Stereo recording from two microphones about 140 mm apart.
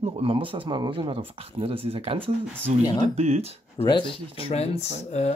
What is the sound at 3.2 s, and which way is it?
Speech, 50° right (ahead or behind).